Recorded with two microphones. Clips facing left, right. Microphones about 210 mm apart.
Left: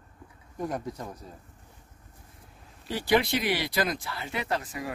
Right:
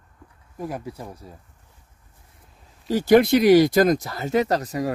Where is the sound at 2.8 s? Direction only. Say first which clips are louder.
Right 9 dB; 45° right (ahead or behind).